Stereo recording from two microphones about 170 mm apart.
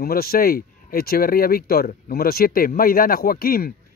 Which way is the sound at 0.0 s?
65° left (ahead or behind).